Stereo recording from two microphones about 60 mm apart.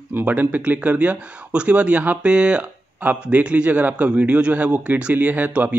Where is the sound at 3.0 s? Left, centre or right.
Right.